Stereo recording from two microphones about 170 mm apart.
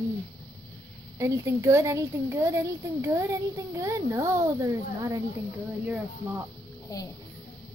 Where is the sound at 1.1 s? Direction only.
15° right (ahead or behind).